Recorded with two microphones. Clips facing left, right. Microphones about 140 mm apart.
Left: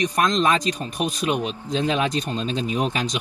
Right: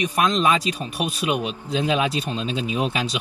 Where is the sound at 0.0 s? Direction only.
10° right (ahead or behind).